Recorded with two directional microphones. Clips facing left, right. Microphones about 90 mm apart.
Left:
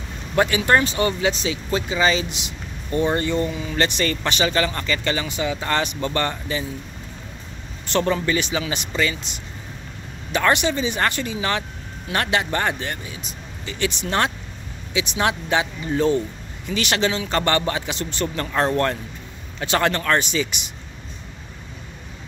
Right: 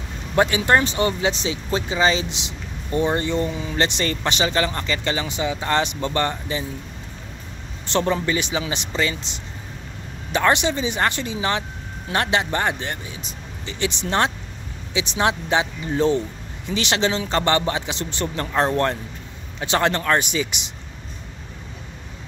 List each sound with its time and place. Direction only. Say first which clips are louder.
0.4 s speech: even; 25° right (ahead or behind)
7.8 s speech: even; 20° right (ahead or behind)